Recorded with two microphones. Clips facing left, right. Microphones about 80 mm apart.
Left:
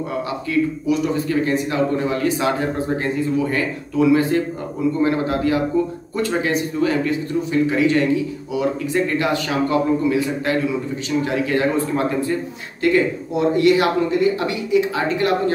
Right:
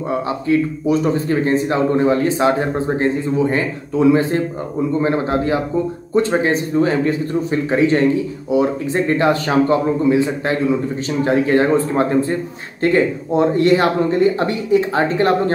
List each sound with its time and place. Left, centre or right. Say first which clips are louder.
0.5 s a man's voice: right 3 dB; right